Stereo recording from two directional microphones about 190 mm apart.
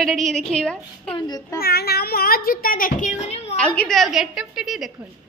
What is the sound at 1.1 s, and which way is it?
Speech, 20° left (ahead or behind).